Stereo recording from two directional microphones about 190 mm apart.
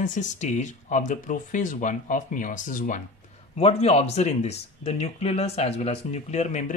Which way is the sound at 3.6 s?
35° left (ahead or behind).